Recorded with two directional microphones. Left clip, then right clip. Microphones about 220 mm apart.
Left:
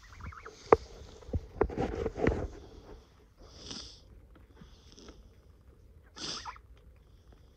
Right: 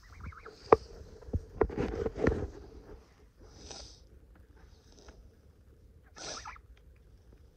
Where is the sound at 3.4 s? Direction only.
40° left (ahead or behind).